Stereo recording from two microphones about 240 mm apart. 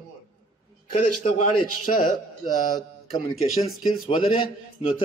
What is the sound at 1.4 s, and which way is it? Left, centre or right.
Speech, left.